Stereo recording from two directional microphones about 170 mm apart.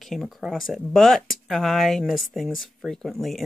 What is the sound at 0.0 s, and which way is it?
Speech, centre (ahead or behind).